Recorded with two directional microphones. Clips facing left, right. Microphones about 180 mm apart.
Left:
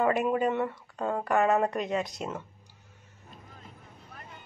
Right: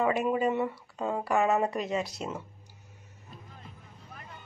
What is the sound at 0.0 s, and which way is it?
A woman's voice, centre (ahead or behind).